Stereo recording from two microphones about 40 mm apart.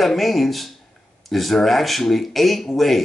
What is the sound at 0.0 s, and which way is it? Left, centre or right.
Speech, centre.